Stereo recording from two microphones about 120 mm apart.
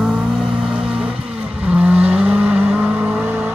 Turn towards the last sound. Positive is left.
turn(degrees=-10)  # may be behind; listen again after turning